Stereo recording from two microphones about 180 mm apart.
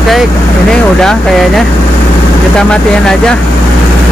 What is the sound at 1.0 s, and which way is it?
Speech, centre (ahead or behind).